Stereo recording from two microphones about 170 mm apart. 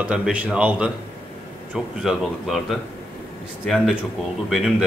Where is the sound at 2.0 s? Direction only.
Centre (ahead or behind).